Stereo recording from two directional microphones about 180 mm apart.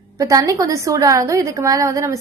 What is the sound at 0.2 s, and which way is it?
A woman's voice, 20° right (ahead or behind).